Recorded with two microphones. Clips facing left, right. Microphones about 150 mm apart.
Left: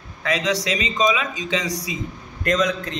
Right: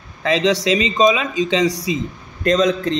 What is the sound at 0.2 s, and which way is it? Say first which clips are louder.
A man's voice: right 6 dB; 25° right (ahead or behind).